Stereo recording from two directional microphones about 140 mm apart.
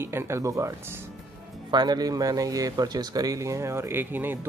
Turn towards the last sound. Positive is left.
turn(degrees=-15)  # may be behind; listen again after turning